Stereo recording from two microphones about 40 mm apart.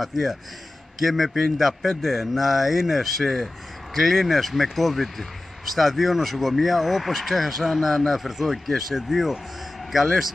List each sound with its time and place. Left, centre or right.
0.0 s speech: centre